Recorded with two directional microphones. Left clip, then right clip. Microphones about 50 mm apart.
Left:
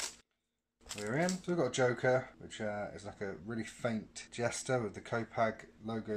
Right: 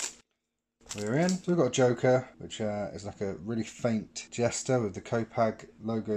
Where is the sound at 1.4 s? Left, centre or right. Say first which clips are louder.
Right 8 dB; right.